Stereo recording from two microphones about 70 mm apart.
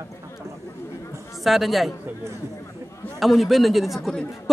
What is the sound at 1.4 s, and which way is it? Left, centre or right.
Speech, centre.